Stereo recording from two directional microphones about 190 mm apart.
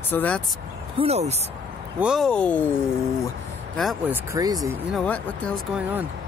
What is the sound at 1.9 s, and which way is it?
Speech, 5° right (ahead or behind).